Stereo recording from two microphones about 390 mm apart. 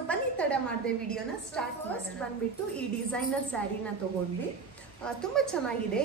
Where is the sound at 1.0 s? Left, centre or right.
Centre.